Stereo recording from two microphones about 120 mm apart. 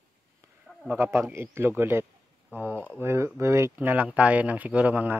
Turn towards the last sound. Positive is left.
turn(degrees=-15)  # may be behind; listen again after turning